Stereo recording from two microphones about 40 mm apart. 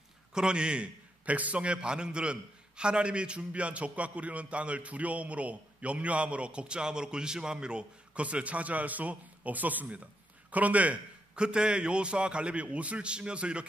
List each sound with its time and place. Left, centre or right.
0.3 s a man's voice: centre
1.2 s a man's voice: right
8.2 s a man's voice: right
11.3 s a man's voice: right